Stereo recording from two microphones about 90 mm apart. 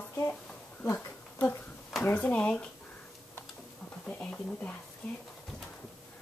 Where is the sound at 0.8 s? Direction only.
25° left (ahead or behind).